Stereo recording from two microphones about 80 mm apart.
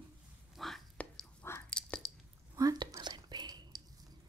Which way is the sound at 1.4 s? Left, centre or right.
Left.